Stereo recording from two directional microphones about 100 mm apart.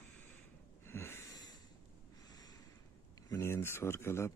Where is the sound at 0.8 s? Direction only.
25° left (ahead or behind).